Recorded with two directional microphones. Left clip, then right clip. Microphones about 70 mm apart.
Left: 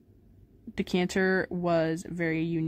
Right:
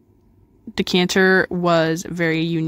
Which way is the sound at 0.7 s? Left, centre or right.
Right.